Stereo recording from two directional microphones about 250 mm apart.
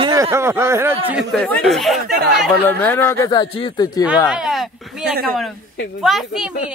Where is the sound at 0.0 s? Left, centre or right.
Centre.